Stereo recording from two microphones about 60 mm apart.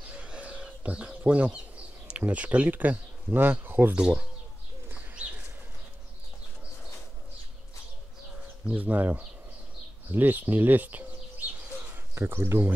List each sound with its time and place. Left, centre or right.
0.0 s bird: centre
2.0 s speech: right
3.9 s speech: centre
8.6 s speech: right
11.9 s speech: right